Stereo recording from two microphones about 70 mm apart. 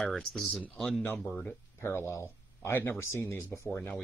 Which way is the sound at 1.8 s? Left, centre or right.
Left.